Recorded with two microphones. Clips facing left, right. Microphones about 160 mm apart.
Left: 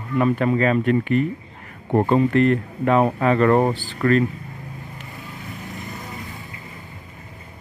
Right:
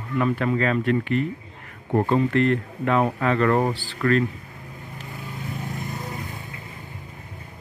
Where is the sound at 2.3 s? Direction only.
20° left (ahead or behind).